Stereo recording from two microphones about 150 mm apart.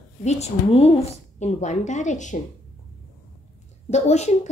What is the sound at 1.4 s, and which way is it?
Speech, 50° left (ahead or behind).